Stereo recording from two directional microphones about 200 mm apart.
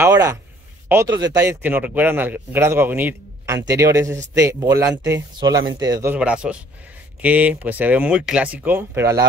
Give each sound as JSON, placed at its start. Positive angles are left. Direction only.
{"t": 0.0, "sound": "a man's voice", "side_deg": -15}
{"t": 6.1, "sound": "a man's voice", "side_deg": -5}